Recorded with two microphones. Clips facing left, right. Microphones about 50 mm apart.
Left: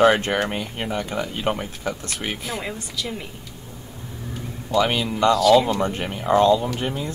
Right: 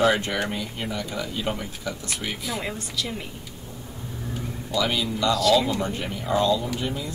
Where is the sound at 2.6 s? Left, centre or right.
Centre.